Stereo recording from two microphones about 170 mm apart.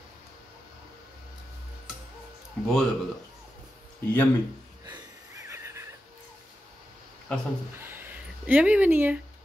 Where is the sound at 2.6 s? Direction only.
5° left (ahead or behind).